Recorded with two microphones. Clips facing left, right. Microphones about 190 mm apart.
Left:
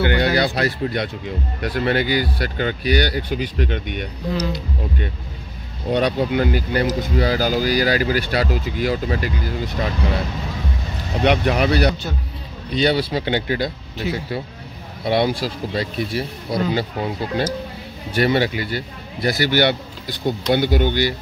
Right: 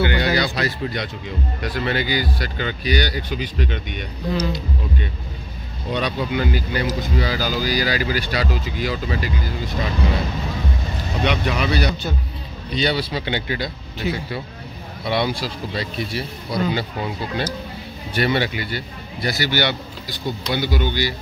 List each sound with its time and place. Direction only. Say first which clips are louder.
0.0 s speech: left 2 dB; 55° left (ahead or behind)
5.9 s speech: left 5 dB; 55° left (ahead or behind)
11.2 s speech: left 5 dB; 55° left (ahead or behind); by 18.8 s 40° left (ahead or behind)
19.2 s speech: left 4 dB; 55° left (ahead or behind)